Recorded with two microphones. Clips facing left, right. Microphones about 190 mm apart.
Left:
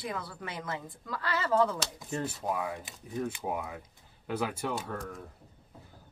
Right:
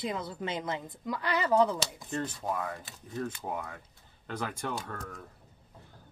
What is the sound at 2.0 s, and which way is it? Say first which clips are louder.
Speech: even; 5° left (ahead or behind).